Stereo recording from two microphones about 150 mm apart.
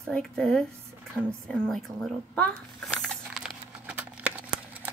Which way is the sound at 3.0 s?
Centre (ahead or behind).